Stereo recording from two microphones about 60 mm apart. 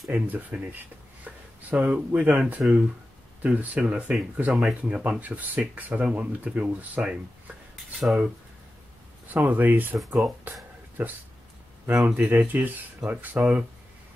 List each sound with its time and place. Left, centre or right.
0.1 s speech: right
7.7 s cutlery: centre
9.3 s speech: right
9.9 s speech: centre
11.0 s speech: right